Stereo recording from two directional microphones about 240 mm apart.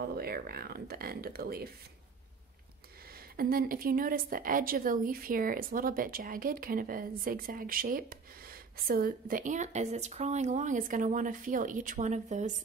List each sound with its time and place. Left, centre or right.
0.1 s a woman's voice: right
3.3 s a woman's voice: right